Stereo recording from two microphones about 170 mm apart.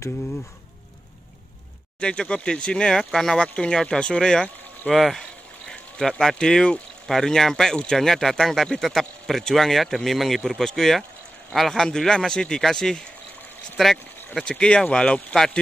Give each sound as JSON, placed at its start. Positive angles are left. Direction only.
{"t": 2.0, "sound": "speech", "side_deg": 5}